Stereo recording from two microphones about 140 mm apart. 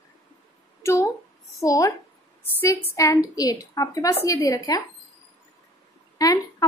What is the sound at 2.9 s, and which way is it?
A woman's voice, 25° left (ahead or behind).